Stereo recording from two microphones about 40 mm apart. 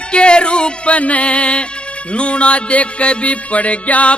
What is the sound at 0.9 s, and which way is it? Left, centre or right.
Music, left.